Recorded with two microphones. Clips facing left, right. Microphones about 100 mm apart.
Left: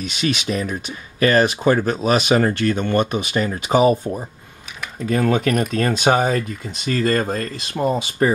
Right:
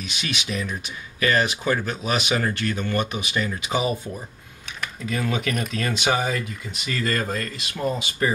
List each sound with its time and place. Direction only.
0.2 s speech: 40° left (ahead or behind)